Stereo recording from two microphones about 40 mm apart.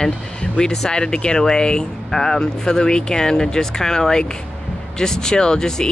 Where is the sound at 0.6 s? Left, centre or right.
Centre.